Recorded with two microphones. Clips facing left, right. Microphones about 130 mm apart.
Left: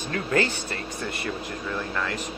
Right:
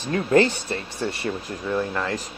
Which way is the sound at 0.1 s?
30° right (ahead or behind).